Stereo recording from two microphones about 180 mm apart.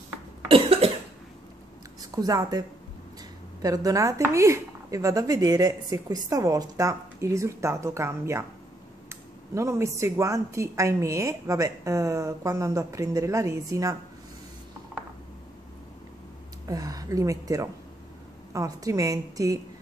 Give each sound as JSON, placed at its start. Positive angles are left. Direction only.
{"t": 0.5, "sound": "cough", "side_deg": -30}
{"t": 2.0, "sound": "a woman's voice", "side_deg": -20}
{"t": 3.6, "sound": "speech", "side_deg": -20}
{"t": 16.6, "sound": "a woman's voice", "side_deg": -20}